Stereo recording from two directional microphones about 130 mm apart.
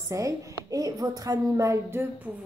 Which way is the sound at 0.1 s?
25° right (ahead or behind).